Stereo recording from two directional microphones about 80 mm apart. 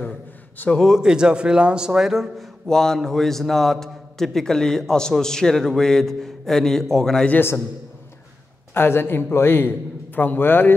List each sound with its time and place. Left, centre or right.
0.8 s a man's voice: centre
7.3 s a man's voice: left
8.7 s a man's voice: left